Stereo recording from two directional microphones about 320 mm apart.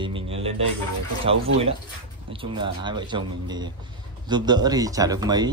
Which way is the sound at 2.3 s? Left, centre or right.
Centre.